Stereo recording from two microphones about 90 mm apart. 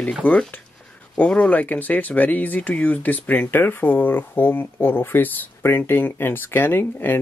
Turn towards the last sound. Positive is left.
turn(degrees=25)  # may be behind; listen again after turning